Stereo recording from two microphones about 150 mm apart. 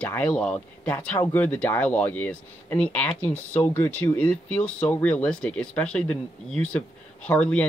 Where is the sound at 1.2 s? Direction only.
20° left (ahead or behind).